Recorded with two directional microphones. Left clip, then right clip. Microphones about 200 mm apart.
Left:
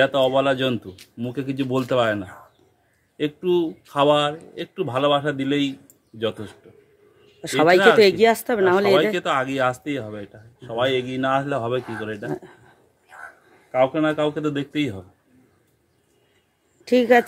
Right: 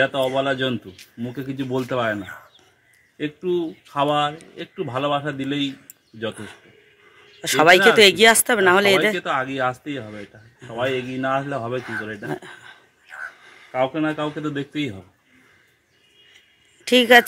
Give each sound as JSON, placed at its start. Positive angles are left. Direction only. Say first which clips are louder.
{"t": 0.0, "sound": "a man's voice", "louder": "left 2 dB", "side_deg": 20}
{"t": 7.4, "sound": "speech", "louder": "right 2 dB", "side_deg": 0}
{"t": 9.1, "sound": "speech", "louder": "left 1 dB", "side_deg": 25}
{"t": 10.9, "sound": "a man's voice", "louder": "even", "side_deg": 10}
{"t": 13.7, "sound": "speech", "louder": "left 3 dB", "side_deg": 20}
{"t": 16.8, "sound": "speech", "louder": "right 3 dB", "side_deg": 0}